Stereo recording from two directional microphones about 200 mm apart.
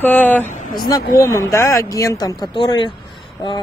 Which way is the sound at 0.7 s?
20° left (ahead or behind).